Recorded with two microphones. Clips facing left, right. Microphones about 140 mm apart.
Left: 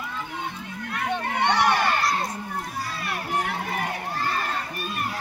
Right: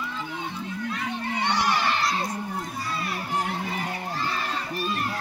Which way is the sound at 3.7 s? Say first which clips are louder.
Left 2 dB; 50° left (ahead or behind).